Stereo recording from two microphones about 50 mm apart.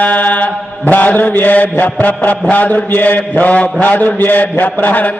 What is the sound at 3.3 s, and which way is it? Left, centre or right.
Mantra, left.